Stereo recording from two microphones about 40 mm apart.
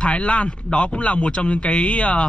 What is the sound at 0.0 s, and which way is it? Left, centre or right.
Speech, left.